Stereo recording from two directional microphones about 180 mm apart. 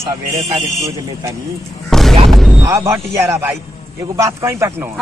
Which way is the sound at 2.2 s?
Centre (ahead or behind).